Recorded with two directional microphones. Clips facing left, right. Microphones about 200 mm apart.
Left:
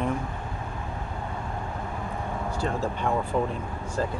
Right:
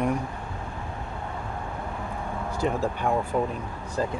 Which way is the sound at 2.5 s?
15° right (ahead or behind).